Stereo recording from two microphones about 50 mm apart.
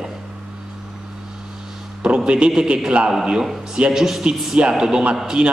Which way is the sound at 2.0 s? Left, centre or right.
Centre.